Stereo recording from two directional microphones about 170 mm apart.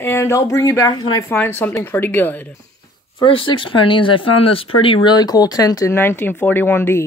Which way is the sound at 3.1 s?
30° left (ahead or behind).